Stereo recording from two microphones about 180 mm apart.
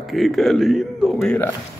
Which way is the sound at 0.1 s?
Centre (ahead or behind).